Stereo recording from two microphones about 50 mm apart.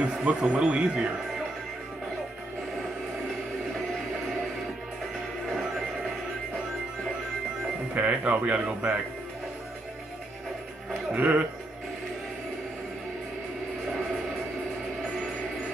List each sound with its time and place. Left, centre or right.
0.0 s speech: right
7.9 s speech: right
11.1 s speech: right